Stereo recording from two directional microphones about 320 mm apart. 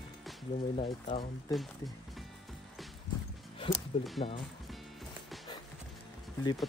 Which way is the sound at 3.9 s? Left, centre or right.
Centre.